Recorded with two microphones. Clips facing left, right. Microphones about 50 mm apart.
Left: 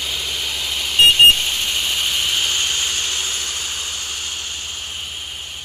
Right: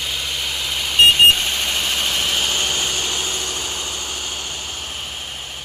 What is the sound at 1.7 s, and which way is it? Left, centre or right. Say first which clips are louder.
Vehicle: even; right.